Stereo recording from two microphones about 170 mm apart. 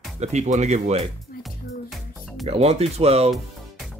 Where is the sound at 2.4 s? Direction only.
35° right (ahead or behind).